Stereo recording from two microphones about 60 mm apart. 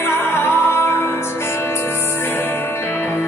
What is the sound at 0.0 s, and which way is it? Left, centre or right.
Music, left.